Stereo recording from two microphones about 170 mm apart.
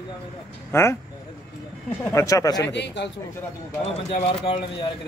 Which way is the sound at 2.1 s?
20° left (ahead or behind).